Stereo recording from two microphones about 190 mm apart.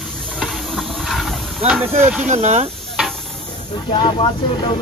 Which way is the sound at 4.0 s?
30° left (ahead or behind).